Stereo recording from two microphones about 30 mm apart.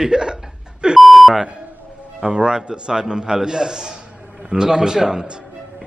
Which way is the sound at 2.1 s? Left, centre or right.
Right.